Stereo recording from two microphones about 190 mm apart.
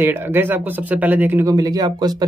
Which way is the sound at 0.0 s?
10° right (ahead or behind).